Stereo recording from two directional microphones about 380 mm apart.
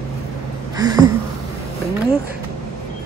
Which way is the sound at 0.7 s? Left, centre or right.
Centre.